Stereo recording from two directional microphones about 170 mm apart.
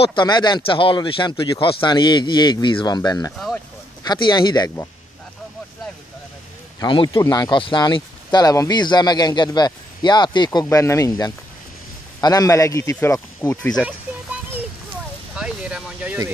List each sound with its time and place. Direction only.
0.0 s speech: 30° left (ahead or behind)
3.3 s speech: centre (ahead or behind)
4.0 s speech: 25° left (ahead or behind)
6.8 s speech: 25° left (ahead or behind)
13.8 s music: 5° right (ahead or behind)
15.3 s a sound: 5° right (ahead or behind)